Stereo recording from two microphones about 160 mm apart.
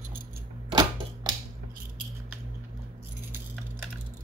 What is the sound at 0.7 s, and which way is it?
Typewriter, 25° right (ahead or behind).